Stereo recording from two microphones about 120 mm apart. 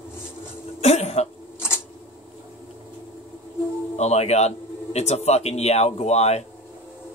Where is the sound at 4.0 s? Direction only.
65° left (ahead or behind).